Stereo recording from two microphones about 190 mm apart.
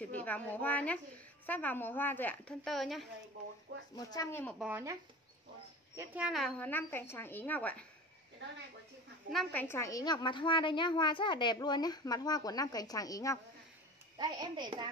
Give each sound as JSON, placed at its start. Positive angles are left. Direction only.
{"t": 0.0, "sound": "a woman's voice", "side_deg": 10}
{"t": 3.9, "sound": "a woman's voice", "side_deg": 20}
{"t": 4.6, "sound": "speech", "side_deg": -10}
{"t": 5.9, "sound": "a woman's voice", "side_deg": -5}
{"t": 9.3, "sound": "a woman's voice", "side_deg": 5}
{"t": 14.1, "sound": "a child's voice", "side_deg": -20}